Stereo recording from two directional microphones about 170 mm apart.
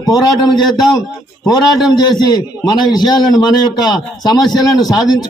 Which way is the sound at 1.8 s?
25° left (ahead or behind).